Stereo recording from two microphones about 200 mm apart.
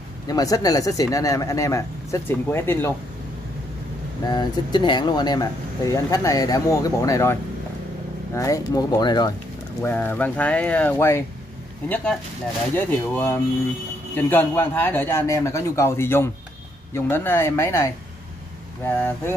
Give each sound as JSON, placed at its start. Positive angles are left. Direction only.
{"t": 0.3, "sound": "speech", "side_deg": 20}
{"t": 4.3, "sound": "speech", "side_deg": 20}
{"t": 8.4, "sound": "speech", "side_deg": 15}